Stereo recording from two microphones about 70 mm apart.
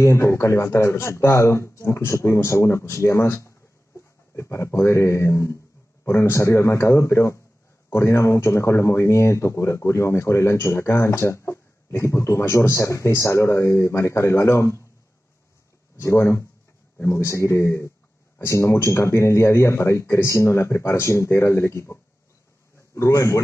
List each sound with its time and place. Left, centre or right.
0.0 s speech: left
16.0 s speech: left
22.9 s speech: left